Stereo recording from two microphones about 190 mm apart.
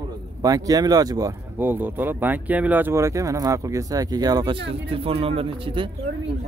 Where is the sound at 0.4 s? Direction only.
20° right (ahead or behind).